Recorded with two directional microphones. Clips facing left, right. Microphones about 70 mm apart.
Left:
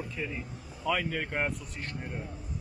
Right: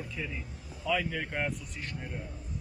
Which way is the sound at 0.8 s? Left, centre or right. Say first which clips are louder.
Left 1 dB; left.